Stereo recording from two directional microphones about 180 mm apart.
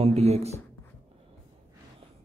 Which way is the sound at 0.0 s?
35° right (ahead or behind).